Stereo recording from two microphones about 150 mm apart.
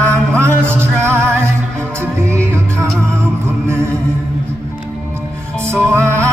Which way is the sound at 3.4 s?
20° right (ahead or behind).